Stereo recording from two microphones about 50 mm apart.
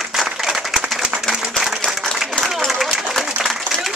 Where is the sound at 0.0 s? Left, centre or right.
Centre.